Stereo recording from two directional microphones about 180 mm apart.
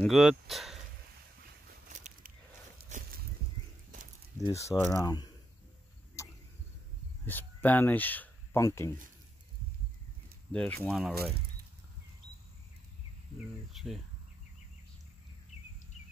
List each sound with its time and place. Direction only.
0.0 s speech: centre (ahead or behind)
1.9 s a sound: 45° right (ahead or behind)
2.9 s walk: 40° right (ahead or behind)
4.6 s speech: 15° left (ahead or behind)
6.2 s cricket: 15° left (ahead or behind)
7.2 s speech: 10° left (ahead or behind)
10.5 s speech: 5° left (ahead or behind)
13.7 s cricket: centre (ahead or behind)